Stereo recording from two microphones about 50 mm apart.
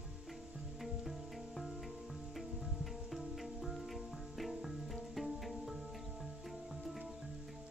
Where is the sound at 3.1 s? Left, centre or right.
Centre.